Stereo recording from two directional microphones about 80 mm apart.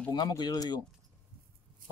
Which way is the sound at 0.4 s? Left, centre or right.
Left.